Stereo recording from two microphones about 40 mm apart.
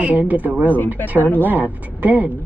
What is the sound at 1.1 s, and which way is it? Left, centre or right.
Speech, left.